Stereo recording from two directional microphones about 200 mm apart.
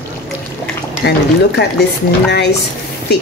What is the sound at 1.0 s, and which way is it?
Speech, 55° left (ahead or behind).